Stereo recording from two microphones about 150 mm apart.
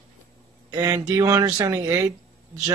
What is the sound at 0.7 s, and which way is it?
Speech, 25° right (ahead or behind).